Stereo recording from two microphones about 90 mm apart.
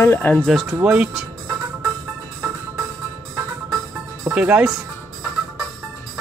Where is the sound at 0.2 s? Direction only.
15° left (ahead or behind).